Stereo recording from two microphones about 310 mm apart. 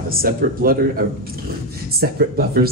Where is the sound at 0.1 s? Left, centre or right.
Right.